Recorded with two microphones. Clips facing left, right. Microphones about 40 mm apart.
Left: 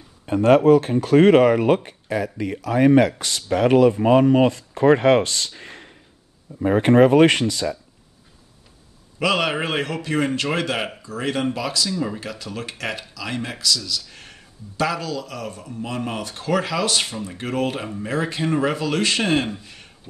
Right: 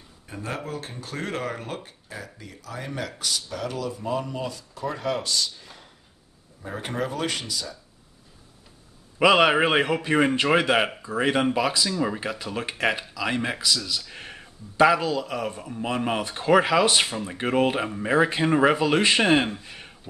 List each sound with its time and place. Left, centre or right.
0.3 s speech: left
9.2 s speech: centre